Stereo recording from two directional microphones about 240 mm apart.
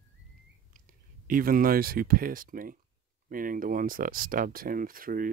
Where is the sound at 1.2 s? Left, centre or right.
Right.